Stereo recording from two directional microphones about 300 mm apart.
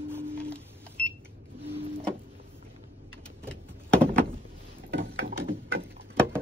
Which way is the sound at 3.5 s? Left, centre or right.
Centre.